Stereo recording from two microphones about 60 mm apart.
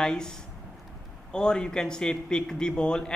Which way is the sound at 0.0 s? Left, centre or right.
Centre.